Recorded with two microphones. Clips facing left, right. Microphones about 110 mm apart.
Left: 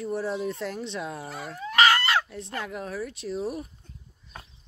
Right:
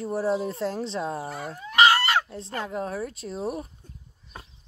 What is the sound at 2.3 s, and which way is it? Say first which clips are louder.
Speech: right 2 dB; 30° right (ahead or behind).